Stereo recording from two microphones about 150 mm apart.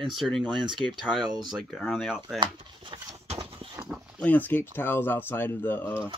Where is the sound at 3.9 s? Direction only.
10° left (ahead or behind).